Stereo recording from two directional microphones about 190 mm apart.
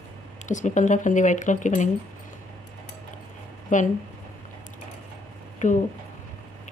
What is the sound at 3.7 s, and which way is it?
Speech, 40° left (ahead or behind).